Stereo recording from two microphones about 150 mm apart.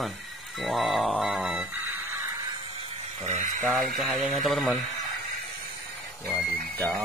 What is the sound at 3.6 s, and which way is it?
Speech, centre (ahead or behind).